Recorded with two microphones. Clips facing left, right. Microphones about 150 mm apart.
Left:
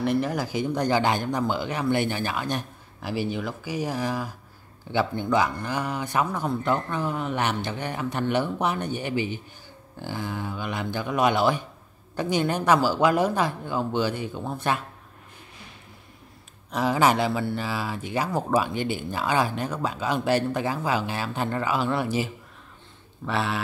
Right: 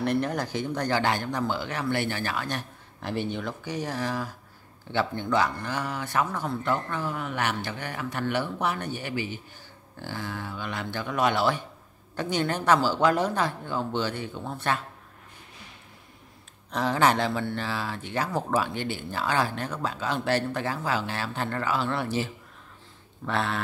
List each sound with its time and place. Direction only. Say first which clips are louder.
0.0 s speech: left 2 dB; centre (ahead or behind)
3.0 s speech: left 2 dB; 5° left (ahead or behind)
16.7 s speech: left 2 dB; 10° left (ahead or behind)